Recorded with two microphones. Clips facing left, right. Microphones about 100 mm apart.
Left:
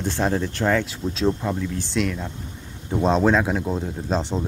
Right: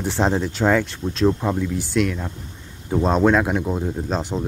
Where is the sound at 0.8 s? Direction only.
Centre (ahead or behind).